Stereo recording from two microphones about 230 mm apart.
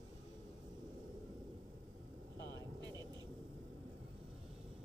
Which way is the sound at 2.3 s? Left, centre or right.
Centre.